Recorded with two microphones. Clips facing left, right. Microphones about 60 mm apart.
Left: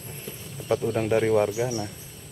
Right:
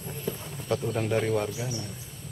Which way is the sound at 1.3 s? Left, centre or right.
Left.